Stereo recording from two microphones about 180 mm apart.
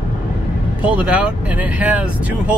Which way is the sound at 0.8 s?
5° right (ahead or behind).